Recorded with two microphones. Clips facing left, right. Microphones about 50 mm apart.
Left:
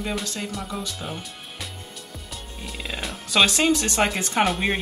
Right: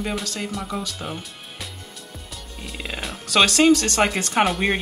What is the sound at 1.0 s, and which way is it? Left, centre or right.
Music, centre.